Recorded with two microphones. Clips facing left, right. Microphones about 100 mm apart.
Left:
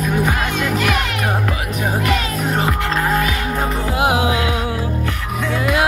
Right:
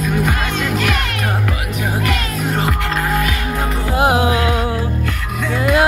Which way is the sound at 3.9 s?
40° right (ahead or behind).